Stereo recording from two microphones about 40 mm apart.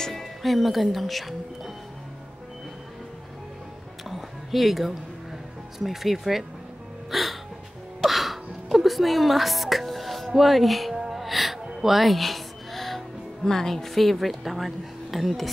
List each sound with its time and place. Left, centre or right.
0.0 s speech: centre
4.1 s a sound: centre
5.8 s speech: centre
7.1 s music: centre